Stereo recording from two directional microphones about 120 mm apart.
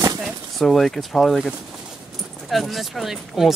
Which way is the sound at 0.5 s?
Centre (ahead or behind).